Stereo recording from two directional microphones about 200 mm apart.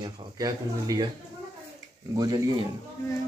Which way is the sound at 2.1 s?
20° right (ahead or behind).